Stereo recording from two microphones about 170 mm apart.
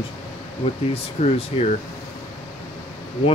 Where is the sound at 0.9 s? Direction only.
35° left (ahead or behind).